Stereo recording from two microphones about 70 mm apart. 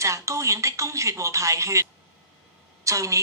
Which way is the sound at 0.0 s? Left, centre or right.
Right.